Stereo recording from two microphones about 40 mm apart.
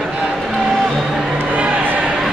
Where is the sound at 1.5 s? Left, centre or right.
Right.